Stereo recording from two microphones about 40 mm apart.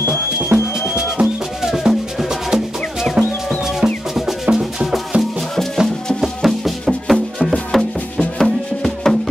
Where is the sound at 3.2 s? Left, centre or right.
Right.